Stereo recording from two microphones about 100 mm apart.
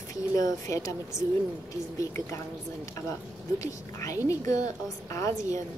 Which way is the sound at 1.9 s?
30° left (ahead or behind).